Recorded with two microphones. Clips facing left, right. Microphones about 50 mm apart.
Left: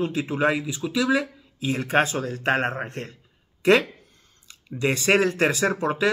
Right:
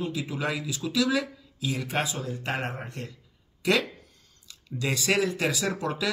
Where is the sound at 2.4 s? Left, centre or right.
Left.